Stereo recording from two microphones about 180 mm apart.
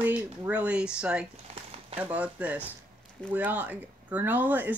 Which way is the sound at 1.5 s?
35° right (ahead or behind).